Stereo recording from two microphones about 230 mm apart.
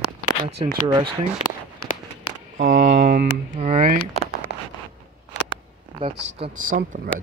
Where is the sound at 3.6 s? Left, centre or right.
Right.